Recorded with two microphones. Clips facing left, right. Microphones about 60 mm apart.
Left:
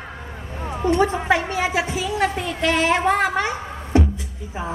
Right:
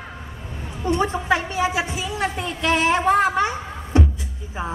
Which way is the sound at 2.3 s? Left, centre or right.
Right.